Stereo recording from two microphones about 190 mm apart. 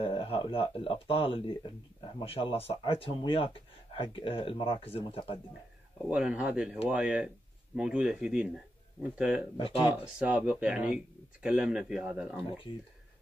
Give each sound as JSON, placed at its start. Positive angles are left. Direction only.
{"t": 0.0, "sound": "speech", "side_deg": 30}
{"t": 6.0, "sound": "speech", "side_deg": -5}